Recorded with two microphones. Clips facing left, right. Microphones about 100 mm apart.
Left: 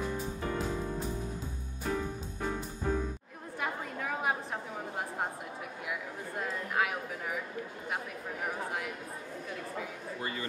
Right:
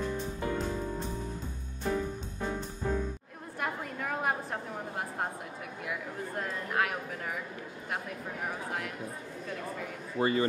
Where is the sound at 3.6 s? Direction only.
Centre (ahead or behind).